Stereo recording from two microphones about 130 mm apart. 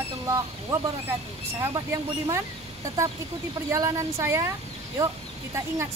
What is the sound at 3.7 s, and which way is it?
Speech, 25° right (ahead or behind).